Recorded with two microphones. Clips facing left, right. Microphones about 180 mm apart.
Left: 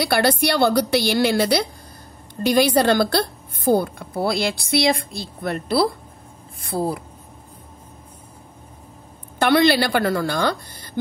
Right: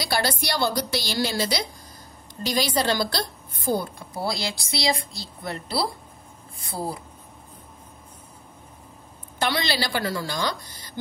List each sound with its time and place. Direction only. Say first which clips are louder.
0.0 s a woman's voice: left 7 dB; 60° left (ahead or behind)
9.4 s a woman's voice: left 9 dB; 60° left (ahead or behind)